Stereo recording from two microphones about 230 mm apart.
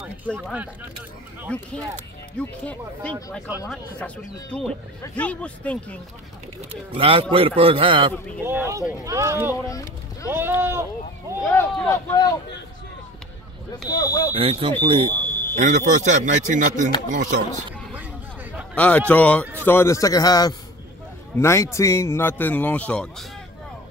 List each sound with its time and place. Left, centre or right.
0.0 s speech: centre
6.9 s a man's voice: right
8.5 s speech: centre
9.5 s a man's voice: centre
10.3 s speech: centre
11.5 s a man's voice: centre
13.8 s a man's voice: centre
14.3 s a man's voice: right
18.8 s a man's voice: centre